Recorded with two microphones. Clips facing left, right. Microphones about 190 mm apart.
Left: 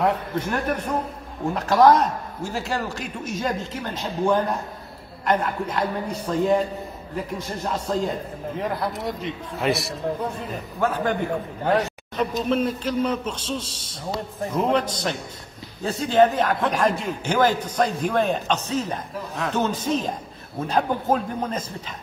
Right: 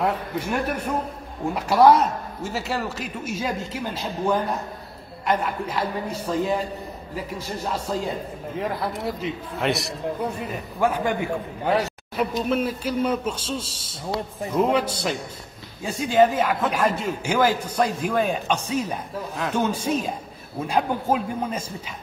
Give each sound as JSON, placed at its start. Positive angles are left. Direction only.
{"t": 0.0, "sound": "a man's voice", "side_deg": -5}
{"t": 10.5, "sound": "speech", "side_deg": -10}
{"t": 14.6, "sound": "speech", "side_deg": -10}